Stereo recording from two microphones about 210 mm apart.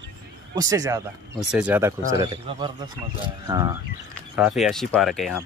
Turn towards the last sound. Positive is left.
turn(degrees=0)  # may be behind; listen again after turning